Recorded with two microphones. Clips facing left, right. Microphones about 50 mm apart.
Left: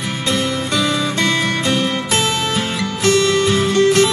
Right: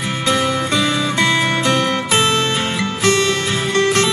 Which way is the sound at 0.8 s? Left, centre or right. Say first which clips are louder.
Left 1 dB; right.